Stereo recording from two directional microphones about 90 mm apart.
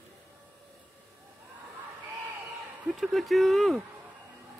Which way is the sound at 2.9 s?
Centre (ahead or behind).